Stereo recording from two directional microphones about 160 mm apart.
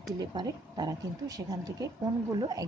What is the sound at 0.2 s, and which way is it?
A woman's voice, 25° right (ahead or behind).